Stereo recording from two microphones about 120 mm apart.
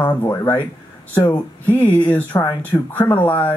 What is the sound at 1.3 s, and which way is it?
Speech, 15° left (ahead or behind).